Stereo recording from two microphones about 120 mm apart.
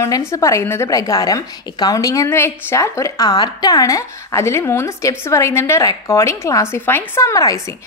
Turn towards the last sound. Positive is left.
turn(degrees=30)  # may be behind; listen again after turning